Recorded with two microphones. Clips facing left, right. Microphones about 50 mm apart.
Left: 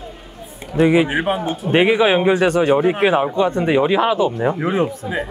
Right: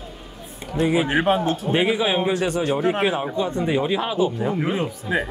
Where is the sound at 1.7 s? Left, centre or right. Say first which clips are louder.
Left 8 dB; left.